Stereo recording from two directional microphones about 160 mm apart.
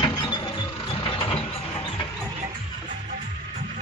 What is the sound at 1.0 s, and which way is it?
Vehicle, 35° left (ahead or behind).